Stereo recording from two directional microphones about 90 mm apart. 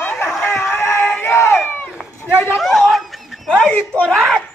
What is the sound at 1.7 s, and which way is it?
Run, 20° left (ahead or behind).